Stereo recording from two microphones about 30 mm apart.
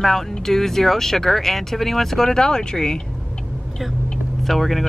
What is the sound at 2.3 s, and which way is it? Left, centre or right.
Speech, left.